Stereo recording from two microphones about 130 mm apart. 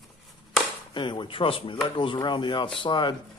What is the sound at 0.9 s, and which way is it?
Speech, 35° left (ahead or behind).